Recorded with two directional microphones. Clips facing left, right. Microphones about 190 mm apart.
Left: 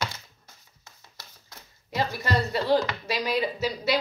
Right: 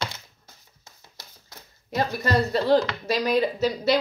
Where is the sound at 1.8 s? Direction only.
45° right (ahead or behind).